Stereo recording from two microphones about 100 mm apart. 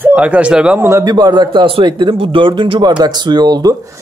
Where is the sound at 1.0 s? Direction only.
40° right (ahead or behind).